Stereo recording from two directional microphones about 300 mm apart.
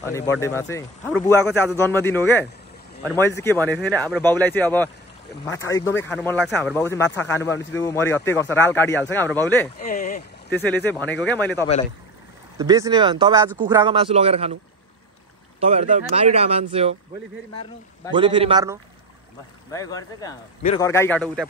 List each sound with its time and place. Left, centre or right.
0.0 s a man's voice: centre
9.8 s speech: left
10.5 s speech: centre
12.5 s speech: centre
15.6 s speech: right
18.1 s speech: centre
19.7 s a man's voice: centre